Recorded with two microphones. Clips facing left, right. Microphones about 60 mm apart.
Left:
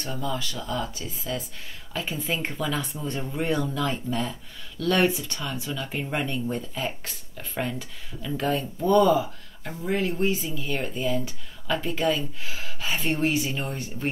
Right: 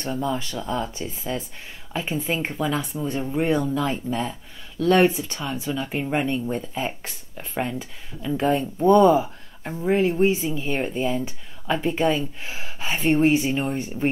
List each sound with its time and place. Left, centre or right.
0.0 s speech: right